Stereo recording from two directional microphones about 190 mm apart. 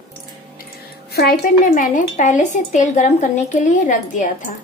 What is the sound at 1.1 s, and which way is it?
Speech, 55° left (ahead or behind).